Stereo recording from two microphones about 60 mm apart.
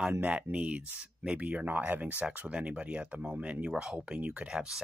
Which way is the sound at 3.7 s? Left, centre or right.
Centre.